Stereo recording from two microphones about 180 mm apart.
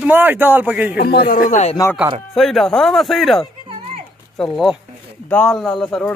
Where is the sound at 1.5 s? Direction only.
35° left (ahead or behind).